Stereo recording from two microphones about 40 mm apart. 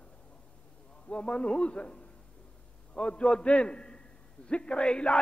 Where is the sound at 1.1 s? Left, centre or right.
Left.